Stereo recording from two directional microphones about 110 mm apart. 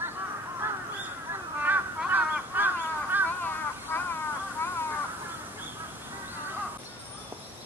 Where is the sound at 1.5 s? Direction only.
15° right (ahead or behind).